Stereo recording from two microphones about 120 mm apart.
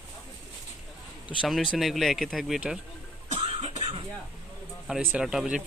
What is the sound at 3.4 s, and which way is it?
Cough, 55° right (ahead or behind).